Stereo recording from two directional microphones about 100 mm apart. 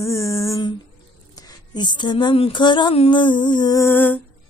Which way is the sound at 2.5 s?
50° left (ahead or behind).